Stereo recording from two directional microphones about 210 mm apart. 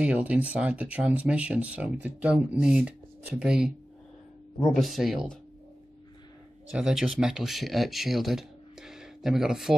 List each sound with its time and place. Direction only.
0.0 s speech: 5° right (ahead or behind)
6.7 s speech: 5° right (ahead or behind)